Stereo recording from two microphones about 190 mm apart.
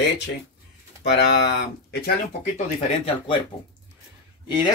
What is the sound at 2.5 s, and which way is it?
Speech, 35° left (ahead or behind).